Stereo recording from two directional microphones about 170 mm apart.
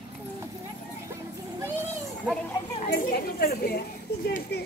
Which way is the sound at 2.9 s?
60° left (ahead or behind).